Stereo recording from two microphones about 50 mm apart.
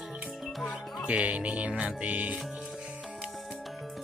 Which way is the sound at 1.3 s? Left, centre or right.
Right.